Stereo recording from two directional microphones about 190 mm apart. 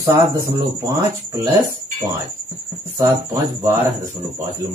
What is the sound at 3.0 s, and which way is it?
Speech, 15° right (ahead or behind).